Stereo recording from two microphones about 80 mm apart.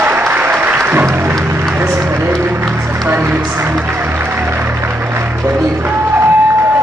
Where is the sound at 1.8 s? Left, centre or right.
Right.